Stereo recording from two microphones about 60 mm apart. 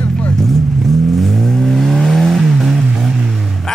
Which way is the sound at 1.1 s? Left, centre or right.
Centre.